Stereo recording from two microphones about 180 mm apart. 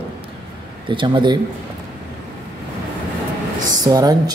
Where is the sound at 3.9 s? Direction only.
20° right (ahead or behind).